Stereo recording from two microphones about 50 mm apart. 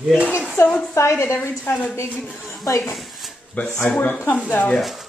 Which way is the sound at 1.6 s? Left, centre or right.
Left.